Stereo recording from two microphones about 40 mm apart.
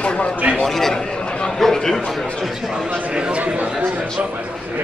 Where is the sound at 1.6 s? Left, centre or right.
Centre.